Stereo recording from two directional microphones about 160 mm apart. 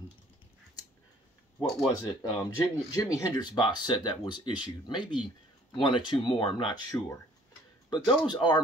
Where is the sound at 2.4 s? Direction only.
20° left (ahead or behind).